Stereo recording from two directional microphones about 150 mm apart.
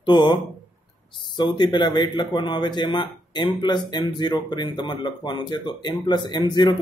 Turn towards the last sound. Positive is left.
turn(degrees=30)  # may be behind; listen again after turning